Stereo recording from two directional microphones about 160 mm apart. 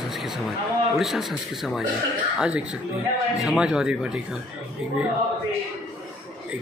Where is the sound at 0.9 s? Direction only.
Centre (ahead or behind).